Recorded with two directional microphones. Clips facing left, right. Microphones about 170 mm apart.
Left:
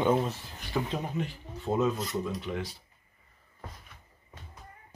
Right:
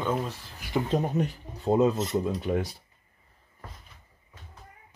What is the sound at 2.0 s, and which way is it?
Filing, 25° right (ahead or behind).